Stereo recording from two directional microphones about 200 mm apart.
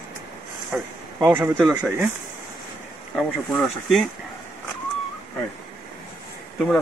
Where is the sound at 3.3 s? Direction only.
Centre (ahead or behind).